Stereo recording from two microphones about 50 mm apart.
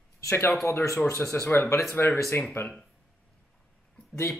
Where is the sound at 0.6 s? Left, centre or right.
Left.